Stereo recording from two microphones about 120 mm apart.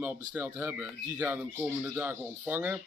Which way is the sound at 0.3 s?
15° right (ahead or behind).